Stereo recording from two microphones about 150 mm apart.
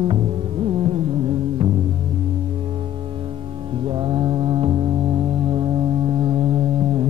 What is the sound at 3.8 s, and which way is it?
Mantra, 35° right (ahead or behind).